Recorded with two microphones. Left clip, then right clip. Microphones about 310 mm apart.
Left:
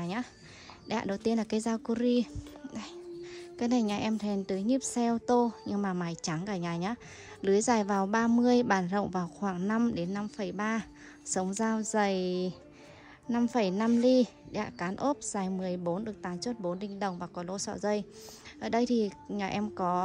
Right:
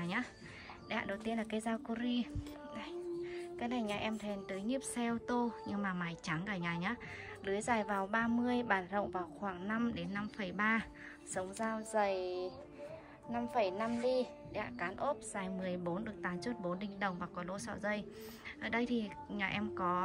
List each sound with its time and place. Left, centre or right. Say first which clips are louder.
0.0 s a sound: left 2 dB; centre
0.8 s speech: left 7 dB; centre
12.0 s speech: left 5 dB; left